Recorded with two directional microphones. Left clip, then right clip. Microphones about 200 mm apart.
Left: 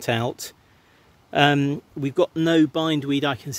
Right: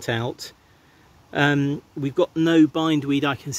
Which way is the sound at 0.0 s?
30° left (ahead or behind).